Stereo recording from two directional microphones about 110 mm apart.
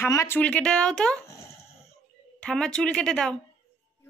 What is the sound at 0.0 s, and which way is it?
Speech, 25° left (ahead or behind).